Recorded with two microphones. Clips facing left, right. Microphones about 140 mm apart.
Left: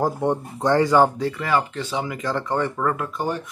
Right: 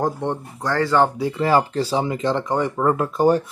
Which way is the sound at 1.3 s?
30° right (ahead or behind).